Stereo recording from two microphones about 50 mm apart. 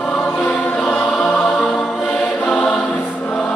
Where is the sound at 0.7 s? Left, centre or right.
Centre.